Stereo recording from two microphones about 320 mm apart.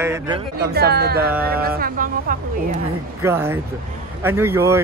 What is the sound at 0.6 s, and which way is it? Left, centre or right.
Speech, right.